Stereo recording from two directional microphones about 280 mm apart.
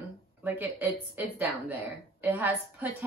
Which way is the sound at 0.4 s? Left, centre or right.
Centre.